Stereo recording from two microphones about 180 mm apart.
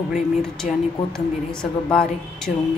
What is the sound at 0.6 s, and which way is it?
Speech, 45° left (ahead or behind).